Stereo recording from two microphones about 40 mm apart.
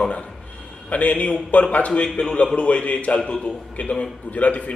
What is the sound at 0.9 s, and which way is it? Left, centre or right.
Speech, left.